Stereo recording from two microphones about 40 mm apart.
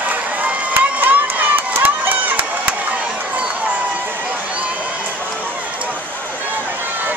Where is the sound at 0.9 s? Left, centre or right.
Right.